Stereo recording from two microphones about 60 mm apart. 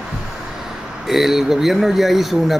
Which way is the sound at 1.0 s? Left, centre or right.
Centre.